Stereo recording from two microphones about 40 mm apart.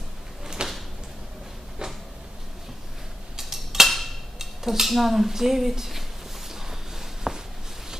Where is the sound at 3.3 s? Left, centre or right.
Centre.